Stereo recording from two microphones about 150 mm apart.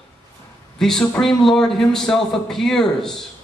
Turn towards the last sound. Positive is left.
turn(degrees=5)  # may be behind; listen again after turning